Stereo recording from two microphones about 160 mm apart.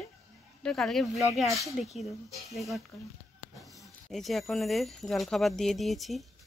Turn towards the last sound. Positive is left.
turn(degrees=0)  # may be behind; listen again after turning